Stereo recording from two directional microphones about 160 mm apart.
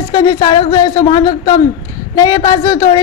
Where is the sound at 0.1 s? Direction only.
25° left (ahead or behind).